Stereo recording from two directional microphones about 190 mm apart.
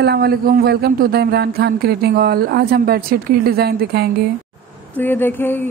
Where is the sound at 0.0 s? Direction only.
55° right (ahead or behind).